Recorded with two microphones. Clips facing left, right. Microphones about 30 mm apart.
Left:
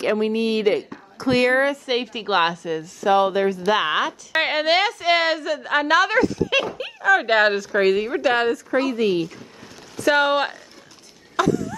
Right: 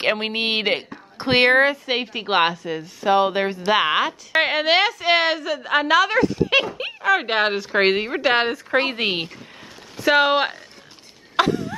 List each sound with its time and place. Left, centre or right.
0.0 s speech: right
1.9 s a woman's voice: centre
4.3 s a woman's voice: centre
6.8 s a woman's voice: right
7.2 s a woman's voice: centre
7.5 s speech: right
8.7 s speech: right
9.9 s a woman's voice: right
11.3 s a sound: right